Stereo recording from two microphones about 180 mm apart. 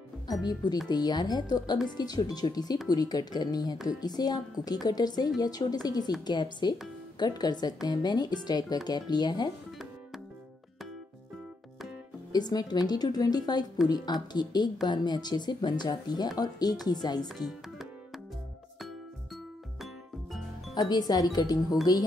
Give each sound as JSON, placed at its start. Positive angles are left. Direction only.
{"t": 0.8, "sound": "speech", "side_deg": 20}
{"t": 12.3, "sound": "speech", "side_deg": 20}
{"t": 17.5, "sound": "music", "side_deg": 0}
{"t": 20.7, "sound": "speech", "side_deg": 20}